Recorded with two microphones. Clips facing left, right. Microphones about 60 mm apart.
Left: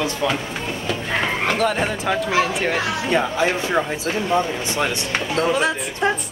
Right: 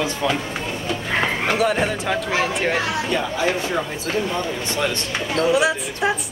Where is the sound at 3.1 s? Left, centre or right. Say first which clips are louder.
Left 5 dB; left.